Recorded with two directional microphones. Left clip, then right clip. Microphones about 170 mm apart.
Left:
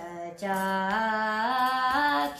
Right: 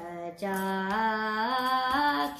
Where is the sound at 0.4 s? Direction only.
15° left (ahead or behind).